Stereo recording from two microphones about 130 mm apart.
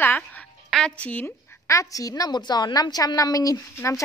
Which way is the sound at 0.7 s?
5° left (ahead or behind).